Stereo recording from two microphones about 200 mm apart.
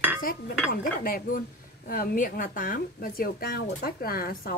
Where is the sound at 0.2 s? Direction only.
45° left (ahead or behind).